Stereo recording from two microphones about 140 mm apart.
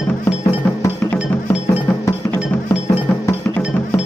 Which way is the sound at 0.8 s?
15° left (ahead or behind).